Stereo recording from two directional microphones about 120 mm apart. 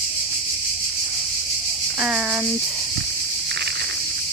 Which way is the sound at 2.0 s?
5° right (ahead or behind).